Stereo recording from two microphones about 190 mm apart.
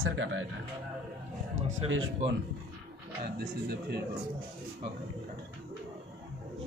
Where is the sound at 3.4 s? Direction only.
55° right (ahead or behind).